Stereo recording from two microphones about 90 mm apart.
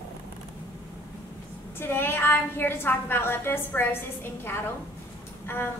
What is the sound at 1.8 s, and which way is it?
A woman's voice, 25° left (ahead or behind).